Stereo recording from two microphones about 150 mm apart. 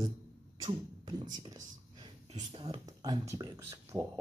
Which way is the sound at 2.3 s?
45° right (ahead or behind).